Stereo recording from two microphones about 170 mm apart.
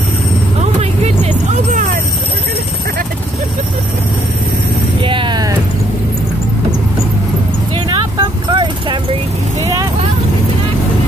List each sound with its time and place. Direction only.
0.6 s vehicle: 40° right (ahead or behind)
5.0 s music: 30° right (ahead or behind)
7.7 s a sound: 25° right (ahead or behind)